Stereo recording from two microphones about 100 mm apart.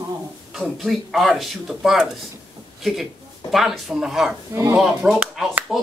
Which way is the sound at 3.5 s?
Centre (ahead or behind).